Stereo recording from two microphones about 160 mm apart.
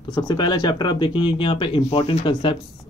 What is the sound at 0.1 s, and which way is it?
Speech, 30° left (ahead or behind).